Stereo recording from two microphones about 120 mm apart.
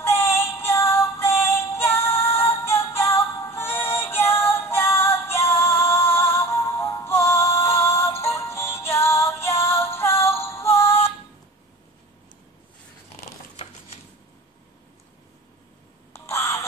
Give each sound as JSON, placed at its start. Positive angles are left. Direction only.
{"t": 0.0, "sound": "synthetic singing", "side_deg": 20}
{"t": 8.2, "sound": "music", "side_deg": 20}
{"t": 16.1, "sound": "a sound", "side_deg": 20}